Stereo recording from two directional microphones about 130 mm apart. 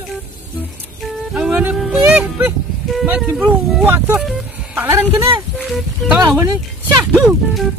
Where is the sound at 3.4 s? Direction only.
15° right (ahead or behind).